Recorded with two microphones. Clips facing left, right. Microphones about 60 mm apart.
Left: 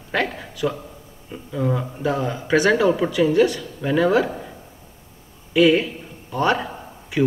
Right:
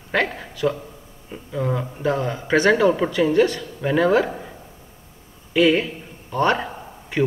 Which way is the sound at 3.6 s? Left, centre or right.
Centre.